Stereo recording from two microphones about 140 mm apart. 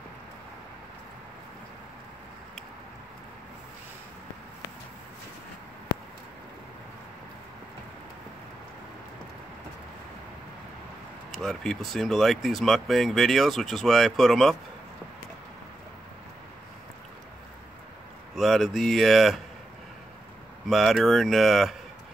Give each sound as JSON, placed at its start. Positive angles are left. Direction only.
{"t": 11.3, "sound": "speech", "side_deg": 5}
{"t": 18.3, "sound": "speech", "side_deg": 0}
{"t": 20.6, "sound": "speech", "side_deg": 0}